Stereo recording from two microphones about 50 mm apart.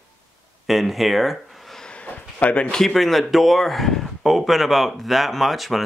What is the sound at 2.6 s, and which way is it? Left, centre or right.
Speech, centre.